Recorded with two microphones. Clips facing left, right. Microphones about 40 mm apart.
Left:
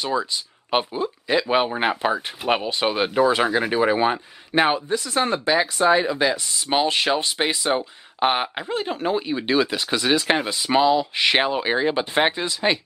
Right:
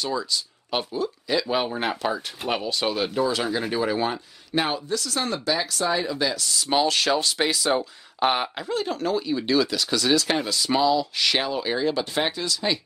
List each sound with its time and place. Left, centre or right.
0.0 s speech: left